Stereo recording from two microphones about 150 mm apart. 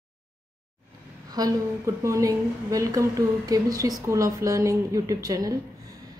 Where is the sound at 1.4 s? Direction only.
25° right (ahead or behind).